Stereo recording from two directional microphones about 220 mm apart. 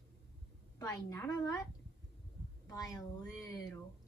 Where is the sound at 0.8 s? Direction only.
15° left (ahead or behind).